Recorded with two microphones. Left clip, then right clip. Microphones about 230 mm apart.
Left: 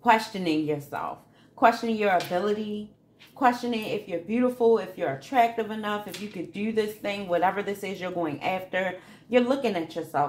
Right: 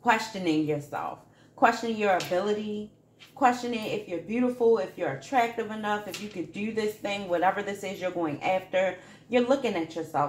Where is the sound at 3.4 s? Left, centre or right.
Left.